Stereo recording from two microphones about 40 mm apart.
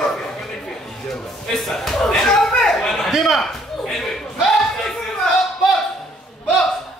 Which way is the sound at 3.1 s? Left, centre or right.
Centre.